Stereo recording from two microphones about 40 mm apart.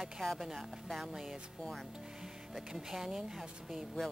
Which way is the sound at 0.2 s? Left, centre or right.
Centre.